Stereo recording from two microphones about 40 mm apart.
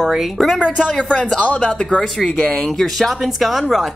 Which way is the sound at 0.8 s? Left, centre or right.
Left.